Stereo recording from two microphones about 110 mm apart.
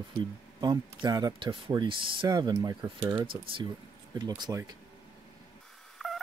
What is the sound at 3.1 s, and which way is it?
Speech, 50° right (ahead or behind).